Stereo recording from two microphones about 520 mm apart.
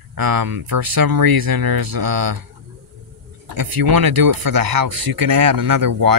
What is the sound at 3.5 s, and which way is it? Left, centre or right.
Speech, right.